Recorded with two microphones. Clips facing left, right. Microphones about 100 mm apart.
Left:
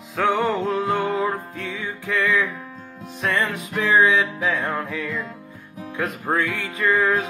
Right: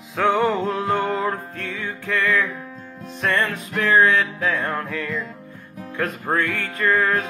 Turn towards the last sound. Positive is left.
turn(degrees=15)  # may be behind; listen again after turning